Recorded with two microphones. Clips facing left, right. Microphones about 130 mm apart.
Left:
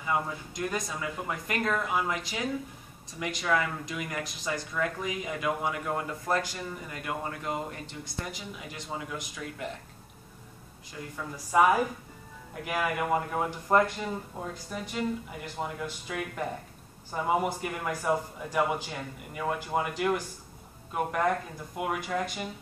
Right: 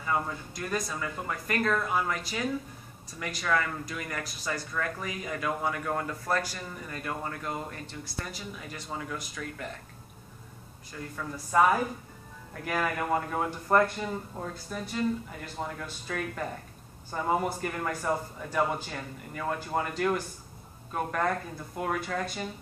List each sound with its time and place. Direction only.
0.0 s speech: 15° left (ahead or behind)
11.5 s speech: 15° left (ahead or behind)